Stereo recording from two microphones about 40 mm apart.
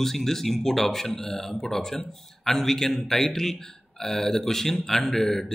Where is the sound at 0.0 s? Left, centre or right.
Centre.